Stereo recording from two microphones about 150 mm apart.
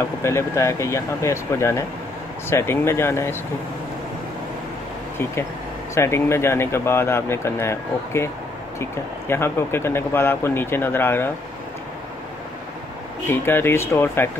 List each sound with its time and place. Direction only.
0.2 s speech: 20° left (ahead or behind)
5.9 s speech: 15° left (ahead or behind)
9.3 s speech: 15° left (ahead or behind)
13.3 s speech: 15° left (ahead or behind)